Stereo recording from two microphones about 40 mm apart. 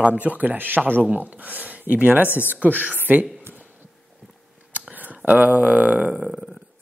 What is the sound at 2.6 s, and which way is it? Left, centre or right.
Speech, right.